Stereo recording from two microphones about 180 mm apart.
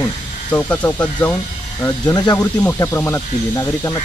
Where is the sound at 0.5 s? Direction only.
10° left (ahead or behind).